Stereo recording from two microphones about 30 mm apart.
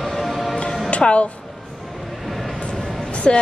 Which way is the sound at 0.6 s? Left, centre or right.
Left.